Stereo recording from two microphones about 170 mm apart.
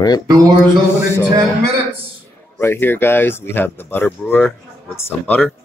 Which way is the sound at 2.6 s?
15° left (ahead or behind).